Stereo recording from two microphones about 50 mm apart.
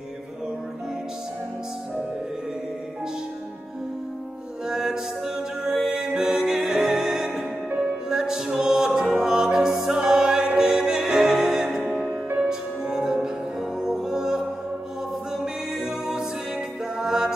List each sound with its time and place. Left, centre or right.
4.6 s music: centre